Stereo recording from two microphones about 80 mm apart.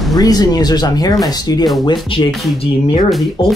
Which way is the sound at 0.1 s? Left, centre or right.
Left.